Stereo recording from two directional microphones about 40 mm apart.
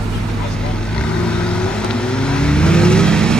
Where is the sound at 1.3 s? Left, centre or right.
Left.